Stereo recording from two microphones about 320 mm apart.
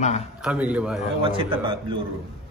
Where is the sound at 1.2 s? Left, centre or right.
Centre.